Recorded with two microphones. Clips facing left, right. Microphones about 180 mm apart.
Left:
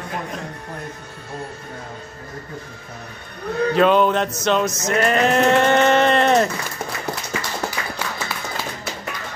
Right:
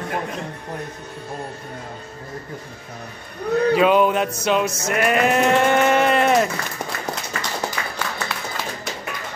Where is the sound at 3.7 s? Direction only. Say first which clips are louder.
Left 2 dB; 5° right (ahead or behind).